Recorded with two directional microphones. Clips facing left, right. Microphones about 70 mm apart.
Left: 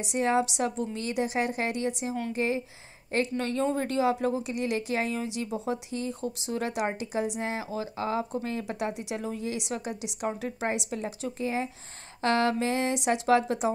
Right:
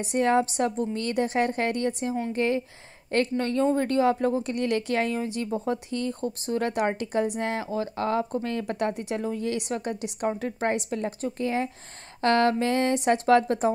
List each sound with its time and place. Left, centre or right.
0.0 s a woman's voice: right
2.3 s a woman's voice: right
3.3 s a woman's voice: right
5.2 s a woman's voice: right